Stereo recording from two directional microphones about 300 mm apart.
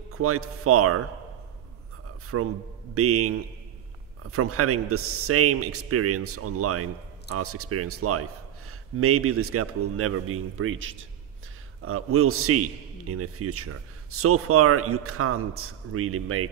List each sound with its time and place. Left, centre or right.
0.1 s a man's voice: right
2.3 s a man's voice: right